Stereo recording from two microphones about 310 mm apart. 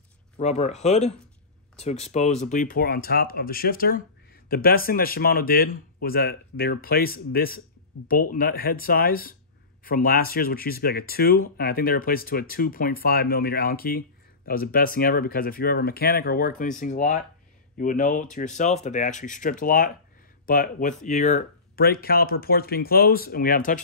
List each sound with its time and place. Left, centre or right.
0.4 s speech: left